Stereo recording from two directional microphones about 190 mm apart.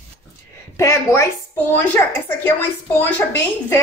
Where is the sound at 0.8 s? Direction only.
15° left (ahead or behind).